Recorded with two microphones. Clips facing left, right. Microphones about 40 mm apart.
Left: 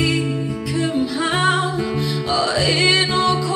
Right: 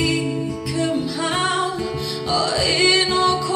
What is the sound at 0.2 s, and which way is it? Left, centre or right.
Music, centre.